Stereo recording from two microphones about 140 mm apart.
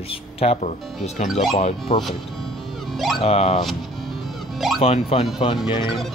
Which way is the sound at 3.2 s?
45° left (ahead or behind).